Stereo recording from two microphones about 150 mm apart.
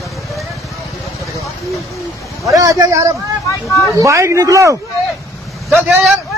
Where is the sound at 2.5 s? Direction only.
25° right (ahead or behind).